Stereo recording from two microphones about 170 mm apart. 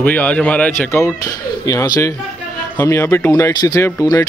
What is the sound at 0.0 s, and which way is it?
Speech, 10° left (ahead or behind).